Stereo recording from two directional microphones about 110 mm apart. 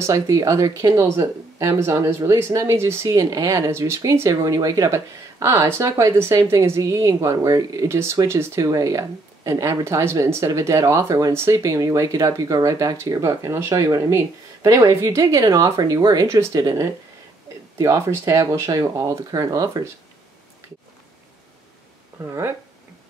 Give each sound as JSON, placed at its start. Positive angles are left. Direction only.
{"t": 0.0, "sound": "speech", "side_deg": -30}
{"t": 22.2, "sound": "speech", "side_deg": -25}